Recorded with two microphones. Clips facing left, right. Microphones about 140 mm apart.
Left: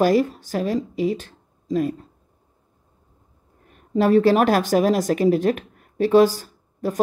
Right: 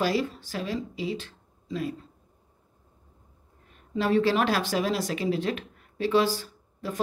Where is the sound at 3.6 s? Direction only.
50° left (ahead or behind).